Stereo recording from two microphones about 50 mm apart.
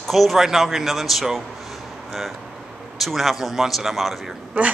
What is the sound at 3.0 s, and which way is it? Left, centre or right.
Speech, centre.